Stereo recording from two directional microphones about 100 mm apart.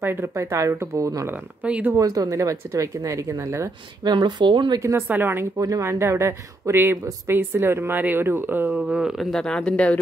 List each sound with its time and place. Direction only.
0.0 s speech: 25° right (ahead or behind)
1.3 s speech: 15° right (ahead or behind)
2.0 s speech: 35° right (ahead or behind)
4.0 s speech: 50° right (ahead or behind)
4.7 s speech: 30° right (ahead or behind)
5.0 s speech: 20° right (ahead or behind)
5.6 s speech: 35° right (ahead or behind)
5.9 s speech: 25° right (ahead or behind)
8.7 s speech: 10° right (ahead or behind)
9.3 s speech: 5° left (ahead or behind)